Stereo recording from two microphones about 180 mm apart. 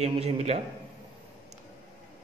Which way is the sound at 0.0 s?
35° right (ahead or behind).